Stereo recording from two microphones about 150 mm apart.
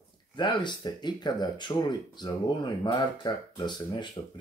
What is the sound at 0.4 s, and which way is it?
Speech, 30° left (ahead or behind).